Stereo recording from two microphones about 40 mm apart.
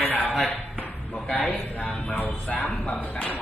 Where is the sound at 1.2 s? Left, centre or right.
Left.